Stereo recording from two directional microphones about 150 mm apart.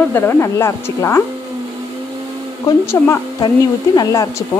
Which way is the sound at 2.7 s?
15° left (ahead or behind).